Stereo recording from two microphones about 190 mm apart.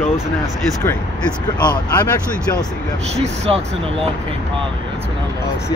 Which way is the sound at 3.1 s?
35° right (ahead or behind).